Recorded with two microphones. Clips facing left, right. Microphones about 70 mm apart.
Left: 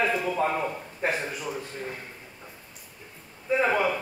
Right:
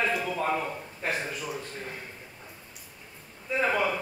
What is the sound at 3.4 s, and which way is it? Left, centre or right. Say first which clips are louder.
Speech: left 3 dB; centre.